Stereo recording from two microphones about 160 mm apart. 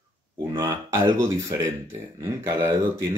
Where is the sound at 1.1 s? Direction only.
15° right (ahead or behind).